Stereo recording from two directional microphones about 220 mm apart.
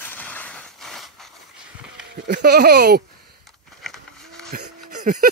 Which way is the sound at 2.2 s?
45° right (ahead or behind).